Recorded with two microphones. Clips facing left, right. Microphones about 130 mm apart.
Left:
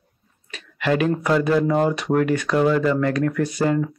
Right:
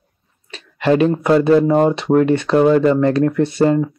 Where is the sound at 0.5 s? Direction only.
30° right (ahead or behind).